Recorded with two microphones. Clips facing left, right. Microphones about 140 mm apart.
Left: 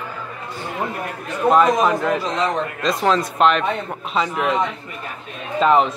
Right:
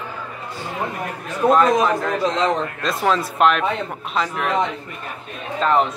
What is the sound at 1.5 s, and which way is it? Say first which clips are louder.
A man's voice: left 2 dB; 5° left (ahead or behind).